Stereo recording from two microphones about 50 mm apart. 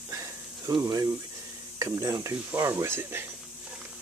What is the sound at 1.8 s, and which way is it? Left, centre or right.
Speech, right.